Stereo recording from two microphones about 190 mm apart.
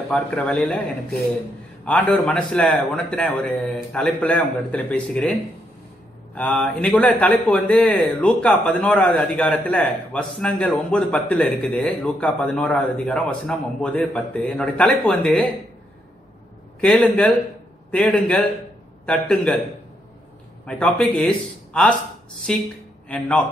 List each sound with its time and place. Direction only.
0.1 s speech: 5° left (ahead or behind)
16.8 s speech: centre (ahead or behind)
20.6 s speech: 5° left (ahead or behind)
22.5 s speech: 5° left (ahead or behind)